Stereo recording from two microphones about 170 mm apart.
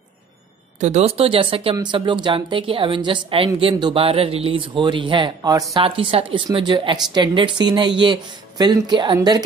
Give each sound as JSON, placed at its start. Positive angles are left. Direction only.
{"t": 0.7, "sound": "speech", "side_deg": -40}
{"t": 5.9, "sound": "speech", "side_deg": -30}